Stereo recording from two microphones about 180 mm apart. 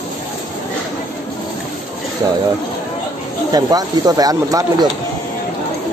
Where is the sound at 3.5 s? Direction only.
20° right (ahead or behind).